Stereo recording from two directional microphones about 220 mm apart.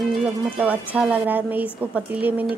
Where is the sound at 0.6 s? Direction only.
5° right (ahead or behind).